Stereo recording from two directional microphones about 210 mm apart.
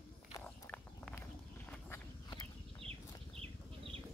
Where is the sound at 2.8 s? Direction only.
30° right (ahead or behind).